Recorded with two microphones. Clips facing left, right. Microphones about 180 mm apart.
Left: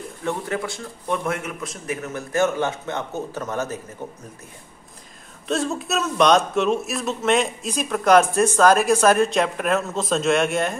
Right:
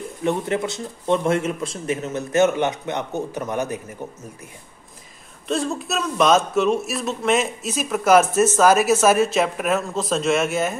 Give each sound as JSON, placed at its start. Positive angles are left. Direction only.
{"t": 0.2, "sound": "speech", "side_deg": -20}
{"t": 5.5, "sound": "a man's voice", "side_deg": 0}